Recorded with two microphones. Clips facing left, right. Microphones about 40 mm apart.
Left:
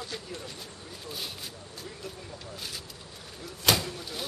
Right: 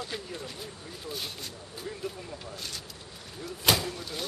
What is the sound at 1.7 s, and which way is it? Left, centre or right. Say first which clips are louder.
Speech: right 7 dB; centre.